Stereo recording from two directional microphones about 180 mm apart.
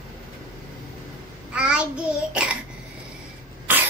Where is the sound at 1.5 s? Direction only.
5° right (ahead or behind).